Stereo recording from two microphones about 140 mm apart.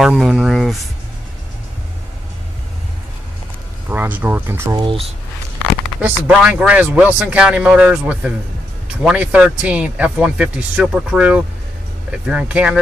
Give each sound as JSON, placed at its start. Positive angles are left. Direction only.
{"t": 0.0, "sound": "speech", "side_deg": -5}
{"t": 3.9, "sound": "speech", "side_deg": -15}
{"t": 4.7, "sound": "speech", "side_deg": -40}
{"t": 5.9, "sound": "speech", "side_deg": -10}